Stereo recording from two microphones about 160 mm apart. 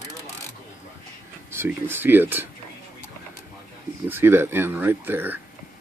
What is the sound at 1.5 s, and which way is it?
Speech, 15° right (ahead or behind).